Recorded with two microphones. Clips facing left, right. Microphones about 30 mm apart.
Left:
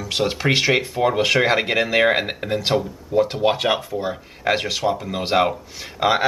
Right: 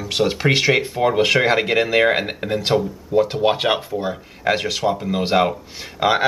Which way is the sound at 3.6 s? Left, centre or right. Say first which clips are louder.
Right 1 dB; right.